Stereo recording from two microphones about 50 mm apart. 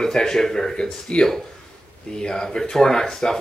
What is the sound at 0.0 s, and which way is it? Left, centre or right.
Speech, centre.